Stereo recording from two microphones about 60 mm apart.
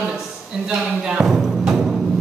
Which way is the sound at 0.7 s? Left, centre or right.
Centre.